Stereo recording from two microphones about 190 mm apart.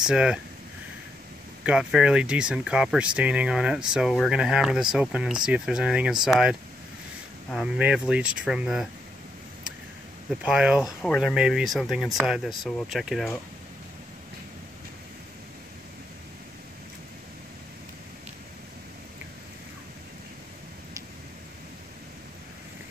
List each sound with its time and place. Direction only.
0.0 s speech: 5° right (ahead or behind)
1.6 s speech: 5° right (ahead or behind)
7.5 s speech: 5° right (ahead or behind)
10.4 s speech: 5° right (ahead or behind)